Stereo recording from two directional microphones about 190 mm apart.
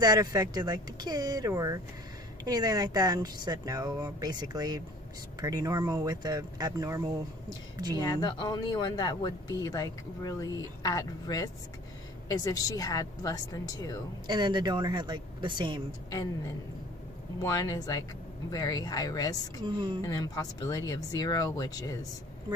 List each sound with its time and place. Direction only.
0.0 s speech: 20° right (ahead or behind)
8.0 s speech: 20° left (ahead or behind)
14.2 s speech: 25° right (ahead or behind)
16.1 s speech: 20° left (ahead or behind)
19.6 s speech: 25° right (ahead or behind)
20.0 s speech: 20° left (ahead or behind)